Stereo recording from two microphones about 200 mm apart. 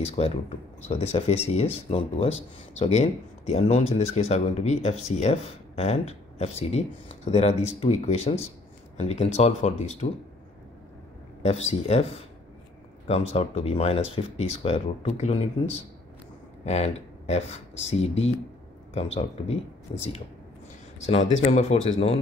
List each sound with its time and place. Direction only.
0.0 s speech: 30° left (ahead or behind)
11.4 s speech: 30° left (ahead or behind)
19.9 s speech: 30° left (ahead or behind)
21.1 s speech: 35° left (ahead or behind)